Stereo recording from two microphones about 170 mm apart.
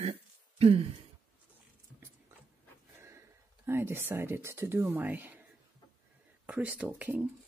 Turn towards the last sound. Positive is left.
turn(degrees=-10)  # may be behind; listen again after turning